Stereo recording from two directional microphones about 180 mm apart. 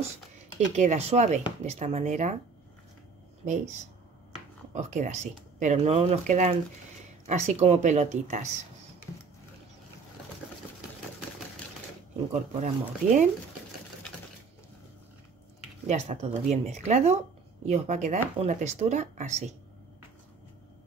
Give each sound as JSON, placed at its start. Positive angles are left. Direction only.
{"t": 0.7, "sound": "speech", "side_deg": -40}
{"t": 3.4, "sound": "speech", "side_deg": -40}
{"t": 12.5, "sound": "speech", "side_deg": -40}
{"t": 15.9, "sound": "speech", "side_deg": -35}